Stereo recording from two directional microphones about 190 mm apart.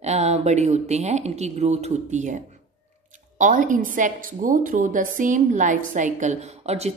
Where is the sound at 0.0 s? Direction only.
35° right (ahead or behind).